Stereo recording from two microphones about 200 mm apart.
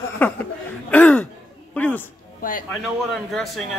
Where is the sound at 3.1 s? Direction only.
Centre (ahead or behind).